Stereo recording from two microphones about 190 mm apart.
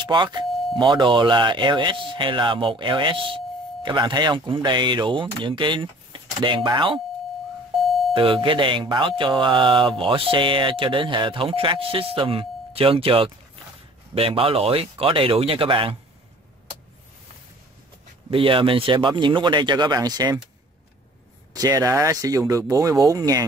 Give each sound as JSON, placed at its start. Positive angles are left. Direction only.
{"t": 0.0, "sound": "speech", "side_deg": -25}
{"t": 7.8, "sound": "doorbell", "side_deg": 0}
{"t": 8.1, "sound": "speech", "side_deg": -30}
{"t": 18.3, "sound": "speech", "side_deg": -30}
{"t": 21.5, "sound": "speech", "side_deg": -20}